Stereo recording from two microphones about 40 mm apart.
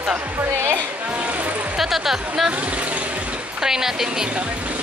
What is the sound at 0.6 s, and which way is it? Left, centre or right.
Speech, right.